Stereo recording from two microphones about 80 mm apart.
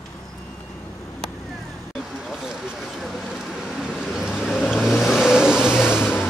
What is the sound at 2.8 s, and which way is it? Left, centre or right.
Vehicle, centre.